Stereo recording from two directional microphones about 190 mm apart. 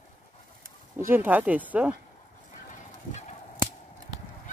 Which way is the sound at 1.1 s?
10° right (ahead or behind).